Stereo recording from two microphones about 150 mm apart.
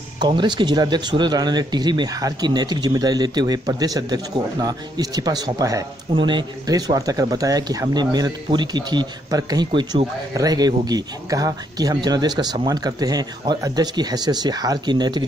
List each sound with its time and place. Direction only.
0.2 s speech: 30° right (ahead or behind)
9.7 s a man's voice: 35° right (ahead or behind)
10.3 s speech: 25° right (ahead or behind)